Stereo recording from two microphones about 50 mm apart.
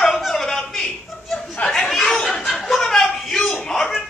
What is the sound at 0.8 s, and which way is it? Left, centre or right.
Chuckle, left.